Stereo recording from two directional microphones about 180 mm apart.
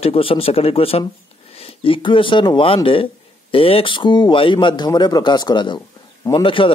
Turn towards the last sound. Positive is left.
turn(degrees=30)  # may be behind; listen again after turning